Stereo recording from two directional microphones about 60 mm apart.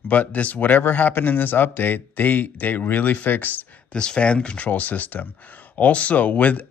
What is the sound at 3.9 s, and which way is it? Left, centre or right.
Speech, centre.